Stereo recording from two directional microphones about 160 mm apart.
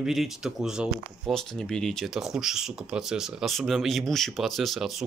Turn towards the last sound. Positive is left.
turn(degrees=0)  # may be behind; listen again after turning